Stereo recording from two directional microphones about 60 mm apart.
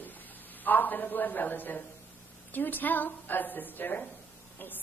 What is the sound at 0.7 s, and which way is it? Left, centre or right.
A woman's voice, left.